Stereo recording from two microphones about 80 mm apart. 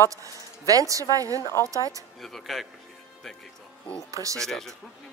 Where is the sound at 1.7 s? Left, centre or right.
Right.